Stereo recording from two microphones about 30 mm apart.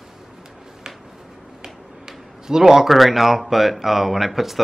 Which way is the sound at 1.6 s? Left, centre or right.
Centre.